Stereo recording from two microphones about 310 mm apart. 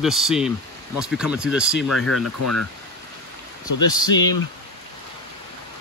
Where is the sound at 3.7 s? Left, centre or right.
Left.